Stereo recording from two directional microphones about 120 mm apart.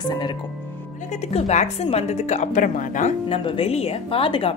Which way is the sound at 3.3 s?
50° left (ahead or behind).